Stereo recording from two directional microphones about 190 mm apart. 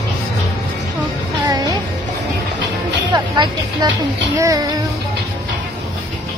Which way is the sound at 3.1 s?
25° right (ahead or behind).